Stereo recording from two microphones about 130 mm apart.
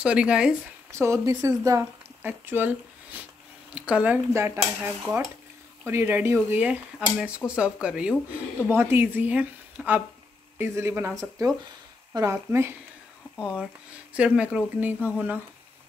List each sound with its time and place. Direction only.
0.0 s speech: 10° right (ahead or behind)
0.9 s speech: 20° right (ahead or behind)
2.2 s speech: 15° right (ahead or behind)
14.1 s speech: 10° right (ahead or behind)